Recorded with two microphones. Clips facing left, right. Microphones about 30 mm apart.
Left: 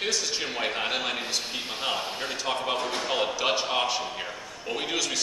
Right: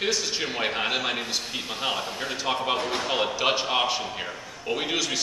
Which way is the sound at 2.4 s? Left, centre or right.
Centre.